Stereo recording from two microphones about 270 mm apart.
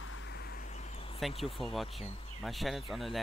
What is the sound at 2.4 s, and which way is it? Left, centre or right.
Speech, centre.